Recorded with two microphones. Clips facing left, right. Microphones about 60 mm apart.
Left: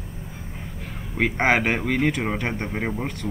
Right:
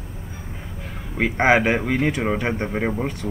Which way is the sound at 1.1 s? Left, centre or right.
Centre.